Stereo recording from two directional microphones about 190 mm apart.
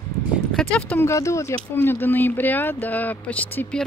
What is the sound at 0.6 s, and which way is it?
Speech, 5° left (ahead or behind).